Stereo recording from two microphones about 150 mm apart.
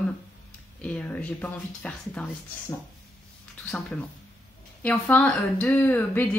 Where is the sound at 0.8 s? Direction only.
10° left (ahead or behind).